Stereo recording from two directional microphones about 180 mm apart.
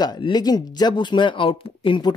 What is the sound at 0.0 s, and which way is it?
Speech, 25° left (ahead or behind).